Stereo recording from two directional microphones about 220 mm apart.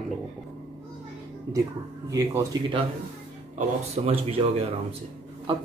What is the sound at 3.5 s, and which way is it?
A man's voice, 30° right (ahead or behind).